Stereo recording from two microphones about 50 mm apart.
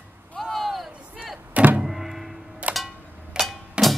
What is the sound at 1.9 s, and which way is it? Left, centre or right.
Thunk, centre.